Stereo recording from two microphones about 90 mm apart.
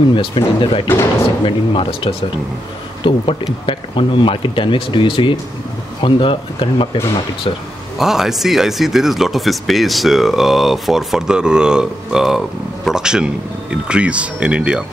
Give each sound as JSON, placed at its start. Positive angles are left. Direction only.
{"t": 0.1, "sound": "speech", "side_deg": 70}
{"t": 3.0, "sound": "speech", "side_deg": 70}
{"t": 8.0, "sound": "speech", "side_deg": -5}